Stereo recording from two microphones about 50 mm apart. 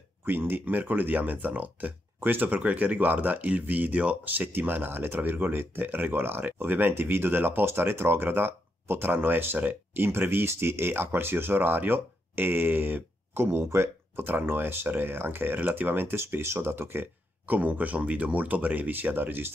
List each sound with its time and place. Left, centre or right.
0.2 s speech: right
4.5 s speech: right
16.2 s speech: right